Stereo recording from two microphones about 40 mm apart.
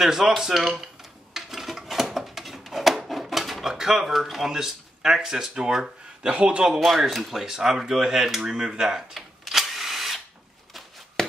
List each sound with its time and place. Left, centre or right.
0.0 s speech: centre
1.3 s a sound: centre
3.7 s speech: centre
6.3 s a man's voice: right
6.8 s speech: centre
9.4 s drill: centre
11.2 s a sound: centre